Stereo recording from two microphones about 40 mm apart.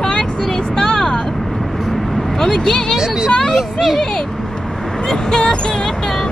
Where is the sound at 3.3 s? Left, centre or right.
Centre.